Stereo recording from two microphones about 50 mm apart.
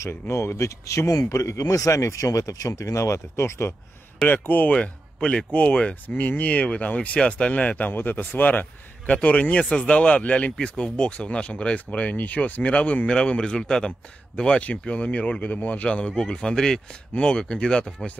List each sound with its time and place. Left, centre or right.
0.0 s speech: left
4.3 s speech: left
4.7 s a man's voice: left
6.0 s speech: left
7.9 s speech: left
9.1 s speech: left